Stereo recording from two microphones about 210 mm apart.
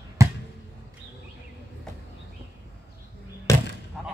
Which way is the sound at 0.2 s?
15° right (ahead or behind).